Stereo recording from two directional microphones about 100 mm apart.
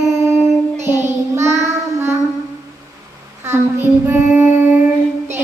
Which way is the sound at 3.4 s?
25° right (ahead or behind).